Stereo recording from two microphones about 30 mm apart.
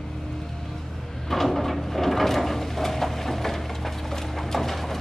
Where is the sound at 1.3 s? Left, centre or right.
Centre.